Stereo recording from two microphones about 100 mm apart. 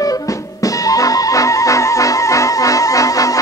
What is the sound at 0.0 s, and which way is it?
Music, 35° left (ahead or behind).